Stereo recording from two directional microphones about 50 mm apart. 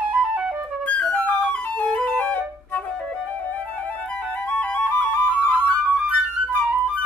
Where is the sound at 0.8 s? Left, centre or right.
Left.